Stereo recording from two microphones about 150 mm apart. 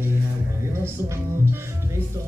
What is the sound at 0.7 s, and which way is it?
Speech, 15° right (ahead or behind).